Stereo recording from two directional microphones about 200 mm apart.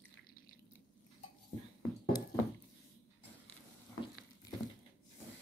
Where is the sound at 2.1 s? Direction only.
20° left (ahead or behind).